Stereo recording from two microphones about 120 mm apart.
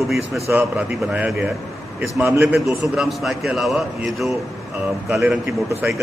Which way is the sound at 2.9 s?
5° right (ahead or behind).